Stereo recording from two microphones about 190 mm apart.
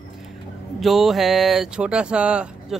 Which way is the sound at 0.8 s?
Centre (ahead or behind).